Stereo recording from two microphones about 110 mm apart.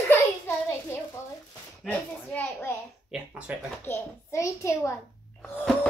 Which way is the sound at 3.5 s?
15° right (ahead or behind).